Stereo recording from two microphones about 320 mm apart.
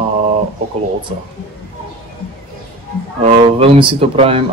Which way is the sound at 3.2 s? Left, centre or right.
Centre.